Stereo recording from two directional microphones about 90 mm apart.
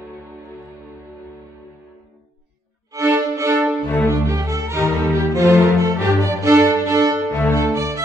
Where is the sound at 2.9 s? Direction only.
35° right (ahead or behind).